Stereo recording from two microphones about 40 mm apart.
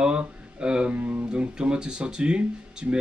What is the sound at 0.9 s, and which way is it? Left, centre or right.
Speech, right.